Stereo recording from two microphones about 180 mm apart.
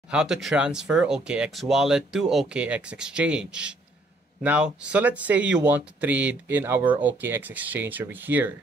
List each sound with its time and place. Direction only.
0.1 s speech: 5° right (ahead or behind)